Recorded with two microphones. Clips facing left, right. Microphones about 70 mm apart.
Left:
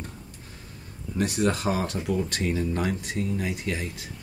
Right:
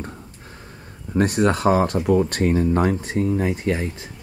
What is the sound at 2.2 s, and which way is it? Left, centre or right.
Speech, right.